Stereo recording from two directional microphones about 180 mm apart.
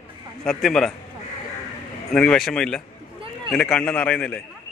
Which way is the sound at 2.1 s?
5° left (ahead or behind).